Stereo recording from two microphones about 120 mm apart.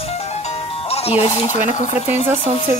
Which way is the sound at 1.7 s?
75° left (ahead or behind).